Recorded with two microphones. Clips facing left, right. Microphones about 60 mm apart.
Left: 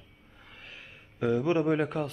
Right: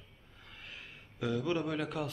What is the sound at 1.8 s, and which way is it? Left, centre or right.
Speech, centre.